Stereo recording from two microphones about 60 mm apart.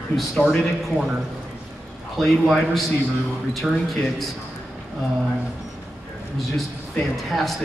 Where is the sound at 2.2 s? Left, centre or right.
Centre.